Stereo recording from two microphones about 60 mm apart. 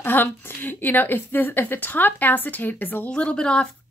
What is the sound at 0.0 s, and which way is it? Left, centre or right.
A woman's voice, left.